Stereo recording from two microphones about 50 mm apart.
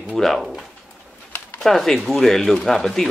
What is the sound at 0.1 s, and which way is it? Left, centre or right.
Speech, centre.